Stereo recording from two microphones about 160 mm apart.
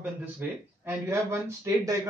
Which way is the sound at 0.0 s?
15° right (ahead or behind).